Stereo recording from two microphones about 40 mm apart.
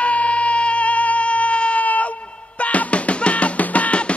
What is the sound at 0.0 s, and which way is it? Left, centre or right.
Music, left.